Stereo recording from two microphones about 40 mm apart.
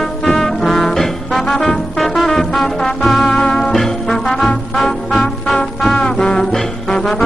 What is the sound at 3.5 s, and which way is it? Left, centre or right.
Music, centre.